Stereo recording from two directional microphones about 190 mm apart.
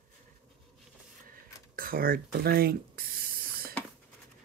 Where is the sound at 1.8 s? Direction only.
50° right (ahead or behind).